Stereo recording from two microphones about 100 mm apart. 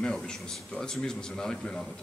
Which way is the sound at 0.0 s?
5° left (ahead or behind).